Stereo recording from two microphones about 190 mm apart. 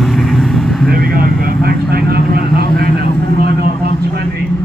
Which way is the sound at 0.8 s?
50° right (ahead or behind).